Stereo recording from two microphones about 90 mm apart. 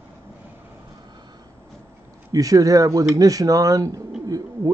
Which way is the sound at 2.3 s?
40° right (ahead or behind).